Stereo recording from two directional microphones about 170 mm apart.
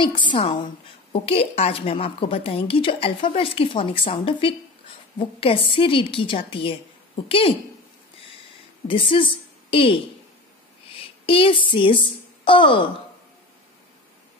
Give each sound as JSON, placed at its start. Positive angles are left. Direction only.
{"t": 0.0, "sound": "a woman's voice", "side_deg": 30}
{"t": 8.8, "sound": "a woman's voice", "side_deg": 30}